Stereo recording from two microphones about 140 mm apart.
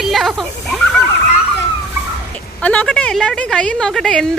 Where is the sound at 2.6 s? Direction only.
10° left (ahead or behind).